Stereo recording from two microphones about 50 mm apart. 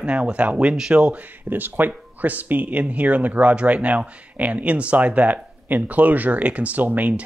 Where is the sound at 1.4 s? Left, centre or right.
Right.